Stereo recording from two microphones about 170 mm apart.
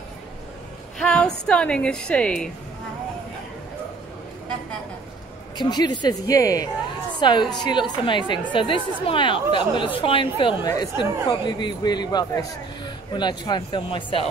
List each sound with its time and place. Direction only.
0.9 s music: 5° left (ahead or behind)
1.4 s a woman's voice: 5° left (ahead or behind)
5.6 s a woman's voice: 25° left (ahead or behind)